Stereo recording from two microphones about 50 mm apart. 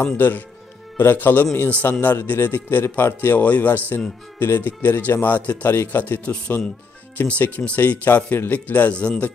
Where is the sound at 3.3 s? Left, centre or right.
Left.